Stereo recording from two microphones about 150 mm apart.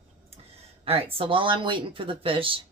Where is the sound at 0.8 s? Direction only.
40° right (ahead or behind).